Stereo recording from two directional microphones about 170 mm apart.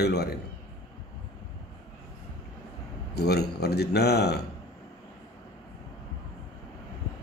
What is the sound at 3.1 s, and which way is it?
A man's voice, 70° left (ahead or behind).